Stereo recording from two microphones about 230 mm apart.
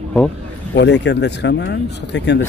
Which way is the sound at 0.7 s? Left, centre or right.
Left.